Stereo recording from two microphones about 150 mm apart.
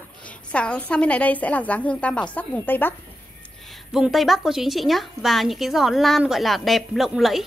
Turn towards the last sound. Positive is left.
turn(degrees=0)  # may be behind; listen again after turning